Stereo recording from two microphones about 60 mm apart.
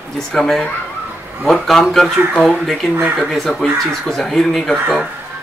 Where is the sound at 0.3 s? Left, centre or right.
Centre.